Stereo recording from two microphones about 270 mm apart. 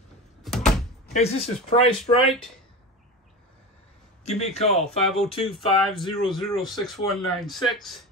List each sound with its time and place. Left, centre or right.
0.4 s door: centre
1.0 s speech: left
4.2 s a man's voice: left
4.7 s speech: centre